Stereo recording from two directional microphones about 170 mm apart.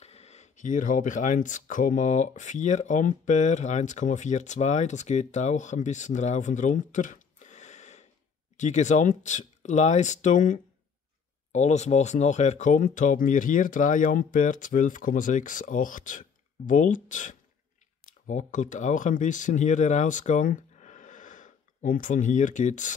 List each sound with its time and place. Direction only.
0.0 s speech: 40° left (ahead or behind)